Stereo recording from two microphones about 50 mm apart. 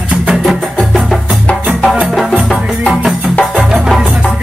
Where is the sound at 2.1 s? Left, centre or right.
Centre.